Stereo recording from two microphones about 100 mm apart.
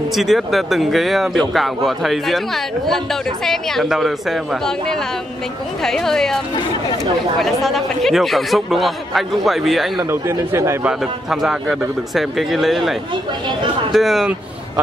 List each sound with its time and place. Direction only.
0.1 s a man's voice: centre (ahead or behind)
7.6 s a man's voice: centre (ahead or behind)
10.2 s speech: 30° right (ahead or behind)
10.8 s a man's voice: 5° right (ahead or behind)
13.9 s a man's voice: centre (ahead or behind)